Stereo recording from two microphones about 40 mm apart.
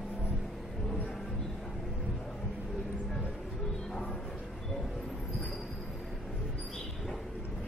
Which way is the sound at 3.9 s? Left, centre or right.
Left.